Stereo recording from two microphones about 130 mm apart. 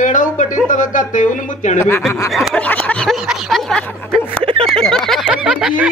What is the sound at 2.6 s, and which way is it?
Speech, 10° left (ahead or behind).